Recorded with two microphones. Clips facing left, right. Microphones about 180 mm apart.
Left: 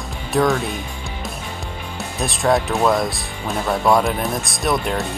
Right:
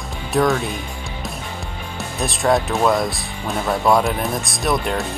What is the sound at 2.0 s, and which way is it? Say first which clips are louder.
Speech: even; centre (ahead or behind).